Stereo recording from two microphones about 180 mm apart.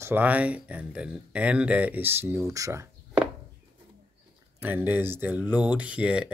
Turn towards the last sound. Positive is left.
turn(degrees=-5)  # may be behind; listen again after turning